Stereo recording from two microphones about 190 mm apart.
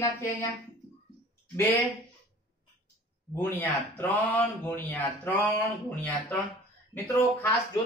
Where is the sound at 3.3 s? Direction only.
10° left (ahead or behind).